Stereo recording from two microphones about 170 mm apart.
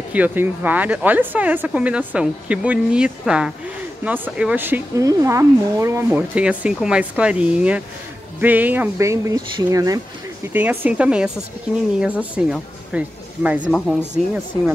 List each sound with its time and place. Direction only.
0.1 s speech: 10° right (ahead or behind)
13.7 s speech: 5° left (ahead or behind)